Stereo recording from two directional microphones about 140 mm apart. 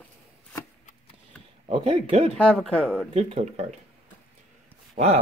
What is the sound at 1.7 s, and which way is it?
Speech, 45° right (ahead or behind).